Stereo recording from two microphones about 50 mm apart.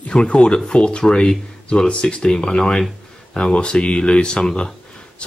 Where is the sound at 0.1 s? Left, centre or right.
Centre.